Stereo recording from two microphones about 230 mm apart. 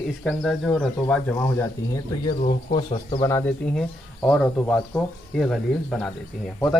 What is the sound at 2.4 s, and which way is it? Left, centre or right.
Speech, left.